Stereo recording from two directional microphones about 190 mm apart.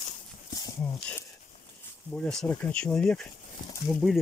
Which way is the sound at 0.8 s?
10° left (ahead or behind).